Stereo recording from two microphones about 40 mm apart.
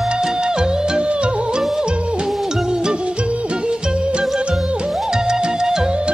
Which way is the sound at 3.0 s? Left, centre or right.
Right.